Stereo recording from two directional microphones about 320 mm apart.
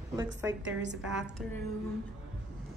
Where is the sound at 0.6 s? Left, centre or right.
Right.